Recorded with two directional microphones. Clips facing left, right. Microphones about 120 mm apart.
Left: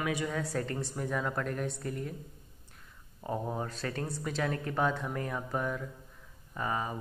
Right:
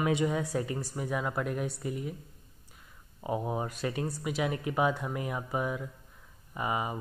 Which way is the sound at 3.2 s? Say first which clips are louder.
Right 2 dB; 10° right (ahead or behind).